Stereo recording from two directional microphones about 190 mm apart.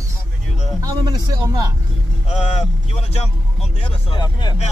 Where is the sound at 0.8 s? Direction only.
20° right (ahead or behind).